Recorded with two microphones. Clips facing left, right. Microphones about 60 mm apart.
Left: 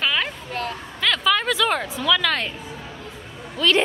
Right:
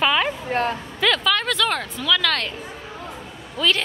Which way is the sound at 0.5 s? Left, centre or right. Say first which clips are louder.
Right 6 dB; right.